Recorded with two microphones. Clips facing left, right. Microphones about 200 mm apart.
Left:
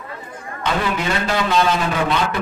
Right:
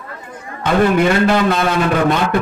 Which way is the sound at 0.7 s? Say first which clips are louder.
Right 8 dB; 55° right (ahead or behind).